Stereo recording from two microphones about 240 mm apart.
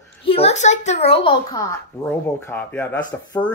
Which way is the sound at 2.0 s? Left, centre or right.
Centre.